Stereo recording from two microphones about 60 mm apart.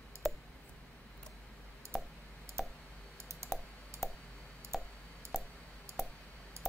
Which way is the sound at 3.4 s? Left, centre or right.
Right.